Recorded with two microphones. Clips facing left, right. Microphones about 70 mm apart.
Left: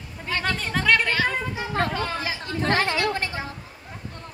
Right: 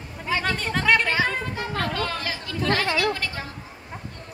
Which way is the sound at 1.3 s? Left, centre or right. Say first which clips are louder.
Even; centre.